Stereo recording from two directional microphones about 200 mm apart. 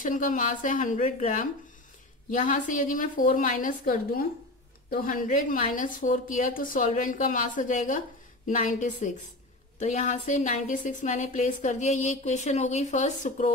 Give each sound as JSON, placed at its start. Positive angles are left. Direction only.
{"t": 0.0, "sound": "a woman's voice", "side_deg": 40}